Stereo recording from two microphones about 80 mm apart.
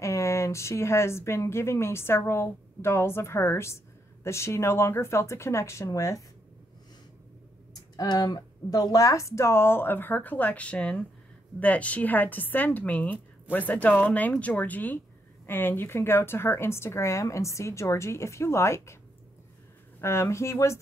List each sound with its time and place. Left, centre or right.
0.0 s speech: left
7.9 s a woman's voice: left
20.0 s speech: left